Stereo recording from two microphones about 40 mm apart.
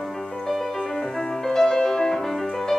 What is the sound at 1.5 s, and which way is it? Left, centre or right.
Music, centre.